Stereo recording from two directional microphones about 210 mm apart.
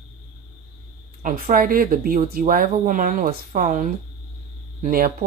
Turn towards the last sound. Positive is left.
turn(degrees=-40)  # may be behind; listen again after turning